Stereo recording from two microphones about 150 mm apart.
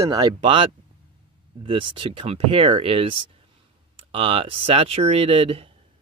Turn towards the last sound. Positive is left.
turn(degrees=-40)  # may be behind; listen again after turning